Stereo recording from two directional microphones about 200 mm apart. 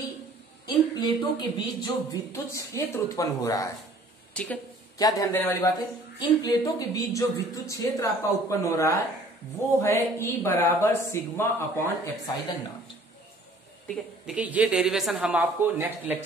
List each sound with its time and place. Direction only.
0.7 s speech: 20° left (ahead or behind)
4.3 s a sound: 5° left (ahead or behind)
4.9 s speech: 15° left (ahead or behind)
13.8 s a woman's voice: 5° right (ahead or behind)